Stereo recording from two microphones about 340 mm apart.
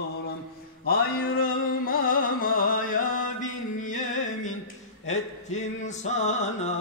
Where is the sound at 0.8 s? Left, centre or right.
Left.